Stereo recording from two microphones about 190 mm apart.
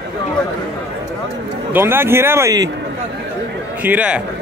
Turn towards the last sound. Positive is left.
turn(degrees=-5)  # may be behind; listen again after turning